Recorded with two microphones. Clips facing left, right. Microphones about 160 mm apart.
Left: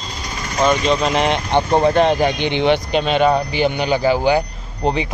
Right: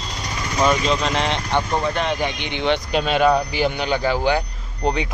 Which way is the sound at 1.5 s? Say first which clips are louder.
Left 8 dB; 35° left (ahead or behind).